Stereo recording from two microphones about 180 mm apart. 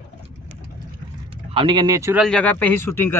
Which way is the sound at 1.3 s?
30° right (ahead or behind).